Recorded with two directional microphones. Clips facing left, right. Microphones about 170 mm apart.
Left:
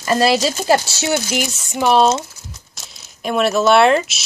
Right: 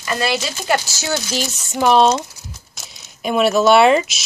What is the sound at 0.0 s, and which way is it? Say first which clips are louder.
Speech: left 6 dB; 35° left (ahead or behind).